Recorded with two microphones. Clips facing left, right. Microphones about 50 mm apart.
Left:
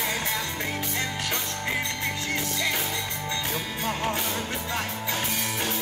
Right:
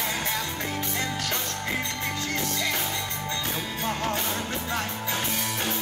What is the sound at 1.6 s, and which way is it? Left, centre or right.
Music, centre.